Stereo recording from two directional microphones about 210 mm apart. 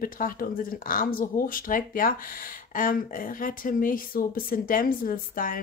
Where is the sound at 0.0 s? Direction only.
45° left (ahead or behind).